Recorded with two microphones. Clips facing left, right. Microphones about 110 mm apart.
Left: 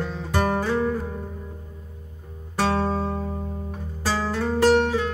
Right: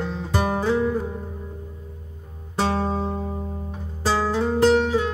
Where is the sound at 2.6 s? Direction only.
20° right (ahead or behind).